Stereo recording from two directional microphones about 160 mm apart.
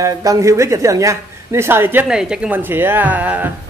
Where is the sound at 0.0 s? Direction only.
20° right (ahead or behind).